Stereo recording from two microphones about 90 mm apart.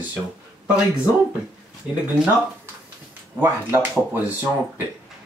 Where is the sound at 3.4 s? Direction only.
25° right (ahead or behind).